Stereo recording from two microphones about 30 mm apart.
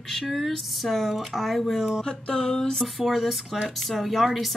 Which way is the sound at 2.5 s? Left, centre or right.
Centre.